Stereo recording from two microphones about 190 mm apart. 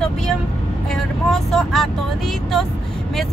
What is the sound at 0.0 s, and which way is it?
Vehicle, centre (ahead or behind).